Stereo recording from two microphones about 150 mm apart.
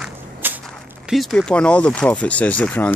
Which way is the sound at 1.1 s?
Centre (ahead or behind).